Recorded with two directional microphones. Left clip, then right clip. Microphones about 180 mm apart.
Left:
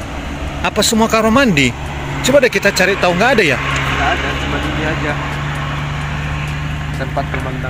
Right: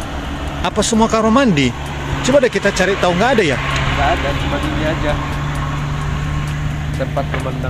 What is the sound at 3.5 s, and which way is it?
Vehicle, 50° left (ahead or behind).